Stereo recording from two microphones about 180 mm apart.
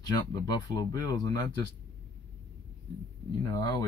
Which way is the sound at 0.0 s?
25° left (ahead or behind).